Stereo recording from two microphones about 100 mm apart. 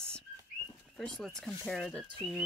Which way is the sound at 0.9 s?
5° left (ahead or behind).